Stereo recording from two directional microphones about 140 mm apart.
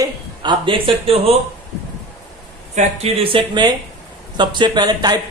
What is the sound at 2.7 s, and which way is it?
Speech, 50° right (ahead or behind).